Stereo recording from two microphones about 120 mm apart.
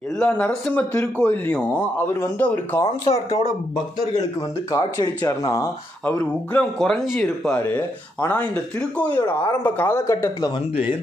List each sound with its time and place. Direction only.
0.2 s speech: 10° left (ahead or behind)
4.6 s speech: 30° left (ahead or behind)
6.0 s speech: 15° left (ahead or behind)
6.8 s speech: centre (ahead or behind); by 10.3 s 20° left (ahead or behind)